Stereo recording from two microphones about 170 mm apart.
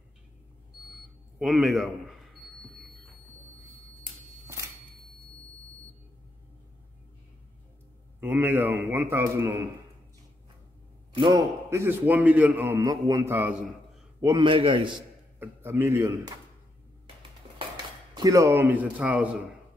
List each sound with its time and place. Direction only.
1.4 s a man's voice: centre (ahead or behind)
8.2 s a man's voice: 10° right (ahead or behind)
11.1 s a man's voice: 25° right (ahead or behind); by 14.3 s 10° right (ahead or behind)
14.3 s a man's voice: 30° right (ahead or behind)
15.3 s a man's voice: 10° right (ahead or behind)
18.1 s a man's voice: 20° right (ahead or behind)